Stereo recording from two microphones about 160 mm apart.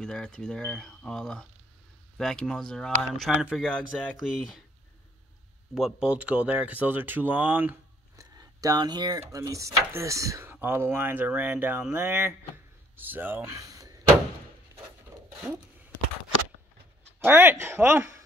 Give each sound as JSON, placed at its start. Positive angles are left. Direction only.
{"t": 0.0, "sound": "speech", "side_deg": 5}
{"t": 5.8, "sound": "speech", "side_deg": -5}
{"t": 8.2, "sound": "a sound", "side_deg": -20}
{"t": 9.2, "sound": "speech", "side_deg": -20}
{"t": 17.2, "sound": "speech", "side_deg": -15}